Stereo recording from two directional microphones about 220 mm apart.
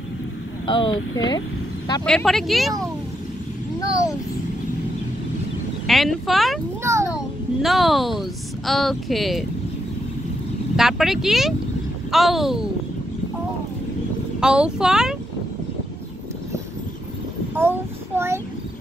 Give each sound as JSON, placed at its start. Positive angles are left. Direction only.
{"t": 0.7, "sound": "speech", "side_deg": 20}
{"t": 2.0, "sound": "speech", "side_deg": 0}
{"t": 5.9, "sound": "speech", "side_deg": 0}
{"t": 6.8, "sound": "a sound", "side_deg": -10}
{"t": 7.2, "sound": "speech", "side_deg": 0}
{"t": 10.8, "sound": "speech", "side_deg": 0}
{"t": 14.4, "sound": "speech", "side_deg": -5}
{"t": 17.6, "sound": "child singing", "side_deg": -10}